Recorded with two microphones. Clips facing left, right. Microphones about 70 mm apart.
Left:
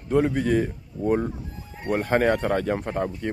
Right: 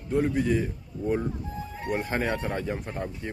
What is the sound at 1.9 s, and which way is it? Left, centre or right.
Speech, left.